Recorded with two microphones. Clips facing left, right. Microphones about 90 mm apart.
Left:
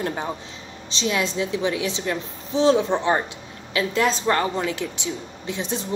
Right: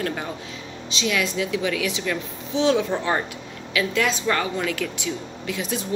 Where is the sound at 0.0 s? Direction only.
25° left (ahead or behind).